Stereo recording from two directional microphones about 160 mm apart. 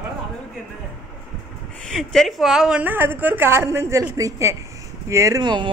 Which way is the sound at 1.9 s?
5° left (ahead or behind).